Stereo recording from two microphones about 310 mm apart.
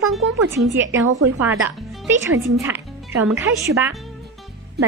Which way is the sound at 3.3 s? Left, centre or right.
Centre.